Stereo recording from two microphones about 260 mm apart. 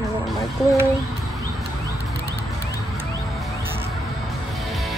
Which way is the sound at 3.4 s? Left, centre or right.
Centre.